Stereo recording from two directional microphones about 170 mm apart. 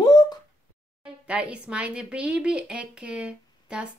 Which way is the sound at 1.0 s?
5° right (ahead or behind).